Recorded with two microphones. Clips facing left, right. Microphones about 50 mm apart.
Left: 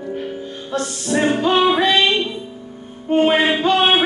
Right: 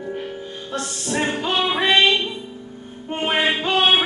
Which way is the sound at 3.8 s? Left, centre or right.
Centre.